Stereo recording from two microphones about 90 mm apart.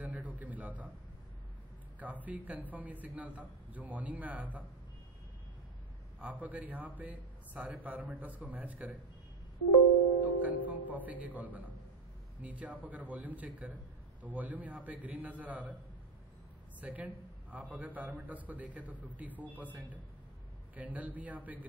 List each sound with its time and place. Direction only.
0.0 s a sound: 15° right (ahead or behind)
2.0 s a man's voice: 20° right (ahead or behind)
6.4 s a man's voice: 15° right (ahead or behind)
10.6 s a man's voice: 20° right (ahead or behind)
16.8 s a man's voice: 15° right (ahead or behind)